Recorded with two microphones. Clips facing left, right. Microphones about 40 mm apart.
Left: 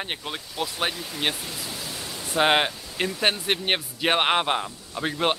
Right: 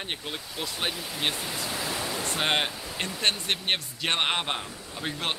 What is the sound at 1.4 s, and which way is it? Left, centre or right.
Speech, centre.